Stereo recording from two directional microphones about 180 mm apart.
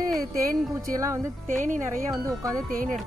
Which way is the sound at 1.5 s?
45° right (ahead or behind).